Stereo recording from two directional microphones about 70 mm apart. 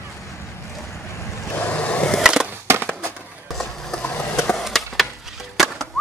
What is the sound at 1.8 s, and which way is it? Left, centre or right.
Skateboard, centre.